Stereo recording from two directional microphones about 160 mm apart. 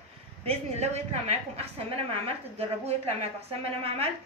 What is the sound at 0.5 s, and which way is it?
Speech, 45° right (ahead or behind).